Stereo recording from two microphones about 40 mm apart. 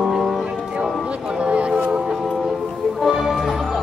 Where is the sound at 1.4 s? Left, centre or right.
Right.